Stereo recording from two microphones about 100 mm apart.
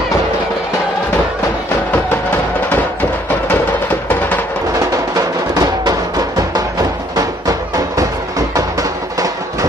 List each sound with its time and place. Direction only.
2.7 s music: 15° left (ahead or behind)
5.1 s music: 40° right (ahead or behind)